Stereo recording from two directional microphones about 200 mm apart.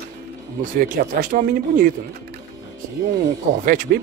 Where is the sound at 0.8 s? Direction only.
45° right (ahead or behind).